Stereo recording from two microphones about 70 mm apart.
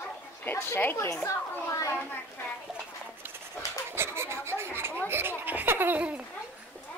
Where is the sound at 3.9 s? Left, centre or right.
Right.